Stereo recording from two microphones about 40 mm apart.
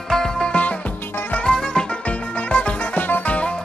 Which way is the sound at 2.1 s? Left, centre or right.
Left.